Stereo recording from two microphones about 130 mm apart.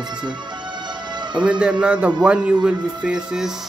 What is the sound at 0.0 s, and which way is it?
Music, 35° right (ahead or behind).